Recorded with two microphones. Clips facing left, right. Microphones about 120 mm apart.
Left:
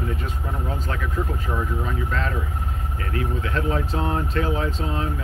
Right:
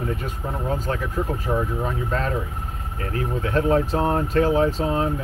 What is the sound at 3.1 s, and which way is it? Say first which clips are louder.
Speech: right 2 dB; 35° right (ahead or behind).